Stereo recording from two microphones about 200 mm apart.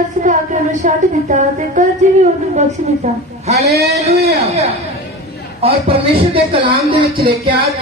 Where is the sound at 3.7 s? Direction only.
55° right (ahead or behind).